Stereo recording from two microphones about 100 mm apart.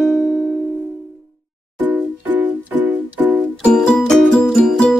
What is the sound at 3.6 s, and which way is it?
Music, 5° left (ahead or behind).